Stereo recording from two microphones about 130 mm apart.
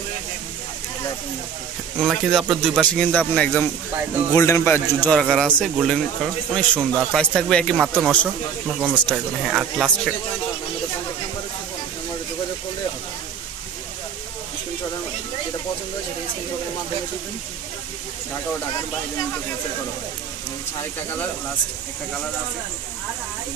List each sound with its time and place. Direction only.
2.0 s speech: centre (ahead or behind)
5.1 s speech: centre (ahead or behind)
7.7 s speech: 10° right (ahead or behind)